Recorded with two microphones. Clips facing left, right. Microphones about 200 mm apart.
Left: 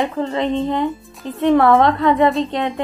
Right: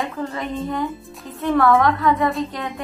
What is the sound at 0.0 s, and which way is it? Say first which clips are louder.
A woman's voice: left 6 dB; 25° left (ahead or behind).